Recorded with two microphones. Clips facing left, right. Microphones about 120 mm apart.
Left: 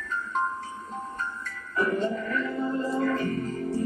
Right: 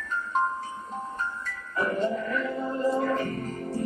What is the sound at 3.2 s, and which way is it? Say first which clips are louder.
Music: left 3 dB; 30° right (ahead or behind).